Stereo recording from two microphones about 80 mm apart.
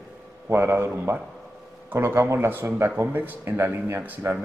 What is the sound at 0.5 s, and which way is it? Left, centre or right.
A man's voice, right.